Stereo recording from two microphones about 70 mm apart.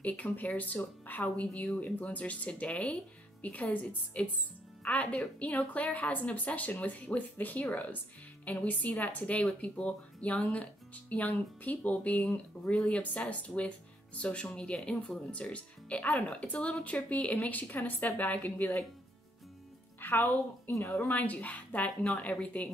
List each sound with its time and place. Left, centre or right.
0.0 s speech: left
20.0 s speech: left
20.8 s speech: left
21.3 s speech: left